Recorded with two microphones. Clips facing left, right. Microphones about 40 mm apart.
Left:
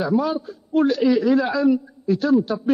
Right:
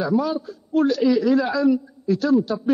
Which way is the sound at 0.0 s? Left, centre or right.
Centre.